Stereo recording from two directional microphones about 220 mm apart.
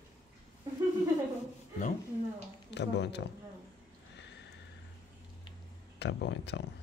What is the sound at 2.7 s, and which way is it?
Speech, 50° left (ahead or behind).